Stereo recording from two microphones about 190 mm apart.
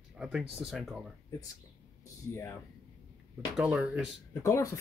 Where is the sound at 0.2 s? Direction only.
5° right (ahead or behind).